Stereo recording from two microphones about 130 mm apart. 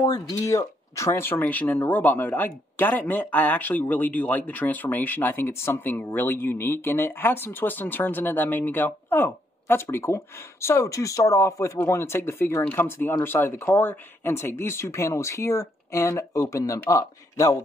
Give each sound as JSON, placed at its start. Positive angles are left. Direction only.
{"t": 0.0, "sound": "a man's voice", "side_deg": 30}